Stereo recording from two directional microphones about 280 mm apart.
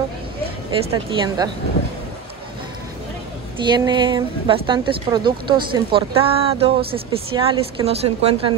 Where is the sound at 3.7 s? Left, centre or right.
Centre.